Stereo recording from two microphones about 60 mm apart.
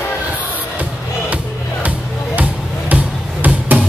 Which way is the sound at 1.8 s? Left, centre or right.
Right.